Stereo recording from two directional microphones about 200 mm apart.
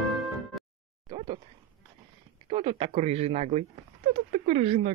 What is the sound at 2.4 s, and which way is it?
Speech, 25° right (ahead or behind).